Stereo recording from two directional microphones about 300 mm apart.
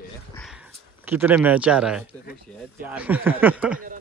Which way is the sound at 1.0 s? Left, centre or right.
Centre.